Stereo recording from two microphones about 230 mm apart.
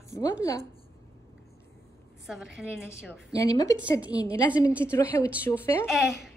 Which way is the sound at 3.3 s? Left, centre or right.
Centre.